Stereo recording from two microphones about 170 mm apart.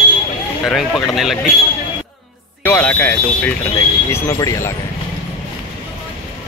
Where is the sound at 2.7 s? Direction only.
10° left (ahead or behind).